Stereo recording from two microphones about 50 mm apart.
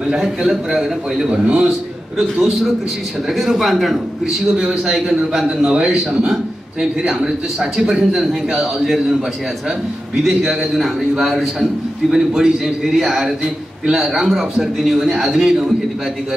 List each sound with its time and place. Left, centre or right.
0.2 s a man's voice: centre
3.3 s a man's voice: centre
4.6 s a man's voice: centre
10.2 s a man's voice: centre